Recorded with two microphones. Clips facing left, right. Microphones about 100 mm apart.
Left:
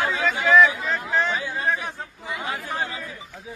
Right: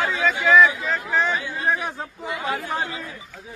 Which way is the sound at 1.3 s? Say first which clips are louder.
Right 1 dB; 20° right (ahead or behind).